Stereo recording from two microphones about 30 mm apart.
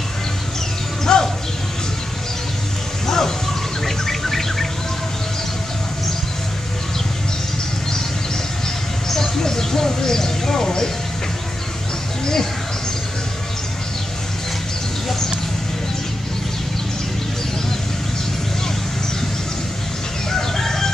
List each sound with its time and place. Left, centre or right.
1.0 s bird: centre
3.1 s music: centre
3.8 s bird: centre
9.1 s a sound: centre
20.2 s chicken: centre